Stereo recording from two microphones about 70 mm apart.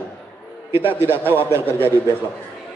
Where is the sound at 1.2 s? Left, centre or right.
Left.